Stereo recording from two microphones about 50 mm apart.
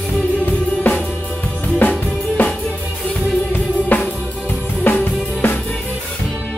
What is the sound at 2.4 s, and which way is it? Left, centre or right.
Music, left.